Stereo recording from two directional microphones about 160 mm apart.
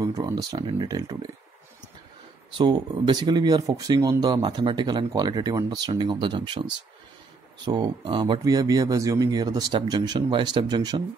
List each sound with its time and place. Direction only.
0.0 s speech: 25° right (ahead or behind)
2.5 s speech: 30° right (ahead or behind)
7.6 s speech: 30° right (ahead or behind)